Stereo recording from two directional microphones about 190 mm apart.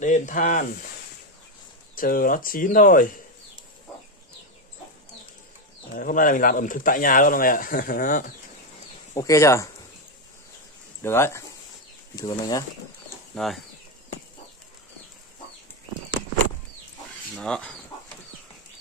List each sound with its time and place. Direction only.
0.0 s speech: 40° left (ahead or behind)
2.0 s speech: 50° left (ahead or behind)
5.9 s speech: 45° left (ahead or behind)
9.1 s speech: 15° left (ahead or behind)
11.0 s speech: 15° left (ahead or behind)
13.3 s speech: centre (ahead or behind)
17.4 s speech: 5° left (ahead or behind)